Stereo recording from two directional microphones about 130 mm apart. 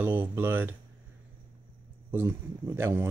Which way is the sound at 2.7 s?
15° right (ahead or behind).